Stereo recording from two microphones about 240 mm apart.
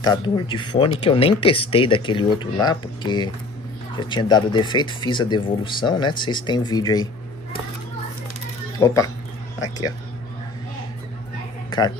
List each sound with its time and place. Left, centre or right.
0.0 s speech: centre
8.7 s speech: centre